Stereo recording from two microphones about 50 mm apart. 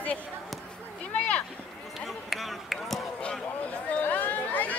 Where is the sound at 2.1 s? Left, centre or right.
Centre.